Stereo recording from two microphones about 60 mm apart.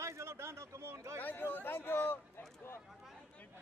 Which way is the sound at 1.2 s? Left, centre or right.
Left.